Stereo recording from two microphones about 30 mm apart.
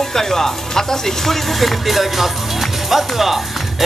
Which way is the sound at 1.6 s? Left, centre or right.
Centre.